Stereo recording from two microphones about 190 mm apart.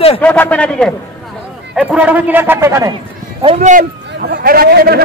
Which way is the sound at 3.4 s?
35° right (ahead or behind).